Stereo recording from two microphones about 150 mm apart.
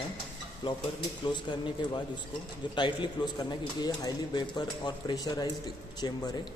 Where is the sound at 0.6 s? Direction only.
35° left (ahead or behind).